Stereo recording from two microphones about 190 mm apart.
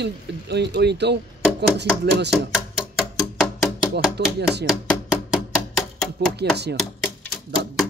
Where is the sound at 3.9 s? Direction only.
60° right (ahead or behind).